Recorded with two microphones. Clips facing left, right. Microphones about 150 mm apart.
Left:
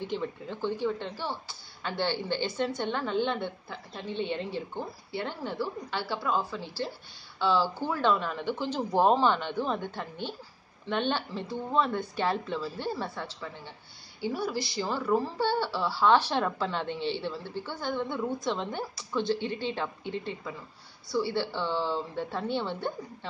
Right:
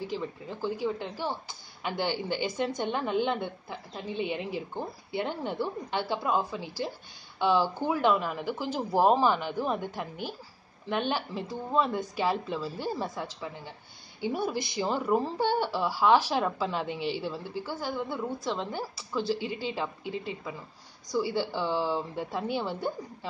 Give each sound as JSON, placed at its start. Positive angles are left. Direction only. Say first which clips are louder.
{"t": 0.0, "sound": "a woman's voice", "louder": "left 1 dB", "side_deg": -5}